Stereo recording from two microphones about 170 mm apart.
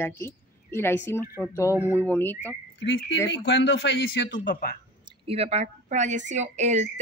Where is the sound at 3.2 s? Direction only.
90° left.